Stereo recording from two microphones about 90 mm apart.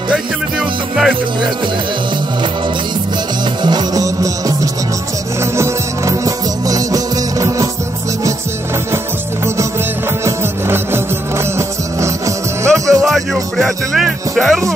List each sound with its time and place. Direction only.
0.1 s music: 5° right (ahead or behind)
3.6 s music: 50° right (ahead or behind)
10.2 s music: 30° right (ahead or behind)
13.0 s music: centre (ahead or behind)